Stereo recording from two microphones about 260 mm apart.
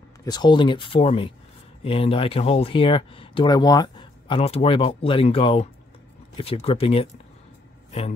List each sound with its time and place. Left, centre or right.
0.2 s speech: centre